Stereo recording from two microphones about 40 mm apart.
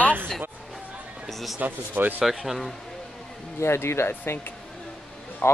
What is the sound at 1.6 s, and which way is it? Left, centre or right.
Speech, right.